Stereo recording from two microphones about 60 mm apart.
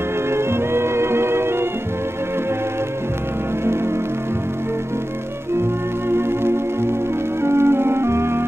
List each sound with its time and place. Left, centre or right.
0.3 s music: right
6.0 s music: right